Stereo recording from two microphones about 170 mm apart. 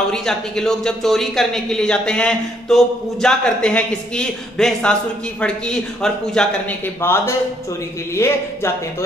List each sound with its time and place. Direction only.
0.1 s a man's voice: 5° left (ahead or behind)
7.0 s speech: 15° left (ahead or behind)